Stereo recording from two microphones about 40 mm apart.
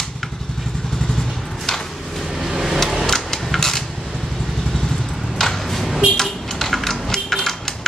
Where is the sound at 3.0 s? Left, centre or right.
Centre.